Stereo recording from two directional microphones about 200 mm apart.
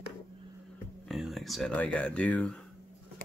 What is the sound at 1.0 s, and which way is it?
Speech, centre (ahead or behind).